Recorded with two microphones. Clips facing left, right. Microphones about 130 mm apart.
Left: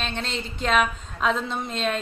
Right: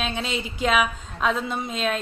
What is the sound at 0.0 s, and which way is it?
A woman's voice, 5° right (ahead or behind).